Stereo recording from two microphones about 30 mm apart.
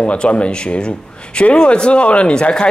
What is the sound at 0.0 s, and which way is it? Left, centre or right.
Speech, left.